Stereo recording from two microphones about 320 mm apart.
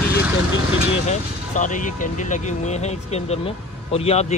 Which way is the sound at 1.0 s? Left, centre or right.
Left.